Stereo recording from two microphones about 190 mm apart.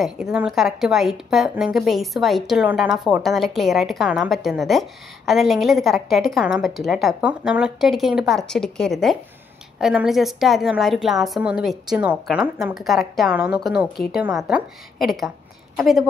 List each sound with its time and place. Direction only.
0.0 s a woman's voice: 5° right (ahead or behind)